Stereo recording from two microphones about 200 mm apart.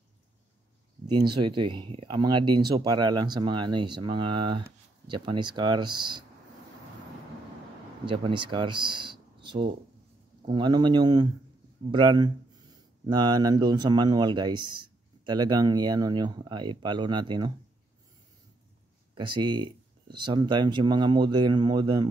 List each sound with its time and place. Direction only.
1.0 s speech: 20° right (ahead or behind)
8.0 s speech: 25° right (ahead or behind)
19.1 s speech: 25° right (ahead or behind)